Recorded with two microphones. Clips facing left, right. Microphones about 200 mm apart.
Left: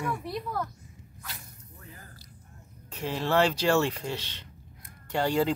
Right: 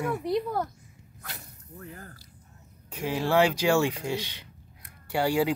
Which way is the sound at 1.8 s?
60° right (ahead or behind).